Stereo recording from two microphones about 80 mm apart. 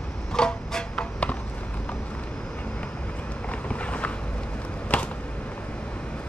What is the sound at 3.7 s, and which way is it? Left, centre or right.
Walk, centre.